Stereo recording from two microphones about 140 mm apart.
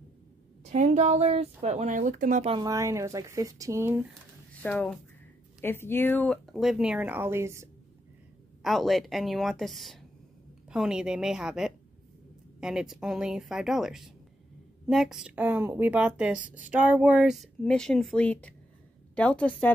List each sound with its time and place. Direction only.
0.7 s speech: 55° right (ahead or behind)
2.6 s speech: 25° right (ahead or behind)
4.6 s a woman's voice: 10° left (ahead or behind); by 7.7 s 20° right (ahead or behind)
8.6 s a woman's voice: centre (ahead or behind)